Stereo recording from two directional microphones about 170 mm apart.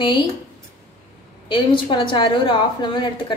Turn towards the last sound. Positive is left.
turn(degrees=30)  # may be behind; listen again after turning